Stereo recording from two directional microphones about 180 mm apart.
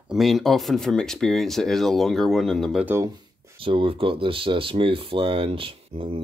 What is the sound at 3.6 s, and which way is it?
Speech, 30° right (ahead or behind).